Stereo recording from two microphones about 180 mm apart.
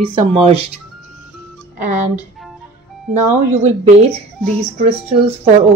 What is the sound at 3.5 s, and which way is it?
Speech, 35° right (ahead or behind).